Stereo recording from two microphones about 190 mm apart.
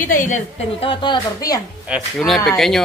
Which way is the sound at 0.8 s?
25° left (ahead or behind).